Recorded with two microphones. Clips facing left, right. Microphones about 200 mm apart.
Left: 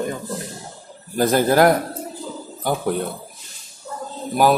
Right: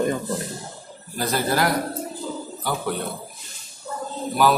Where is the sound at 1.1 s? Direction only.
50° left (ahead or behind).